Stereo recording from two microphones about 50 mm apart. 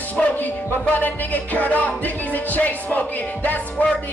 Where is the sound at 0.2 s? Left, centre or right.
Centre.